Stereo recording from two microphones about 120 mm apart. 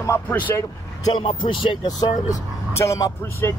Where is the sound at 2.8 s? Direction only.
25° left (ahead or behind).